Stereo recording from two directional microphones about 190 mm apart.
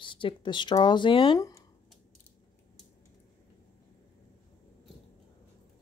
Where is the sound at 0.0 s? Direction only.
25° left (ahead or behind).